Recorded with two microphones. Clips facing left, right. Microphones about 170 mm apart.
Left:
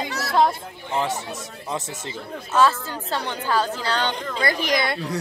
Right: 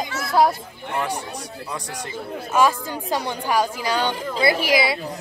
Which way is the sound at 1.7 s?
25° left (ahead or behind).